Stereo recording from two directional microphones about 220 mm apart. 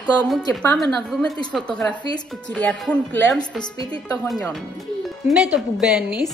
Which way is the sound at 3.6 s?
20° left (ahead or behind).